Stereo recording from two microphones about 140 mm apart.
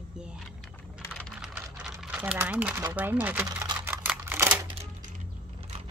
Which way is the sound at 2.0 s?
10° right (ahead or behind).